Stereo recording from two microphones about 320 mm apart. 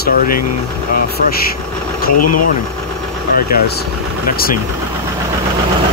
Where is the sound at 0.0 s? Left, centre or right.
Left.